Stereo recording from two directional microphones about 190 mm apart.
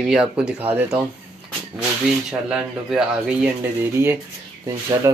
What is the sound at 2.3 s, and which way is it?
Speech, 5° right (ahead or behind).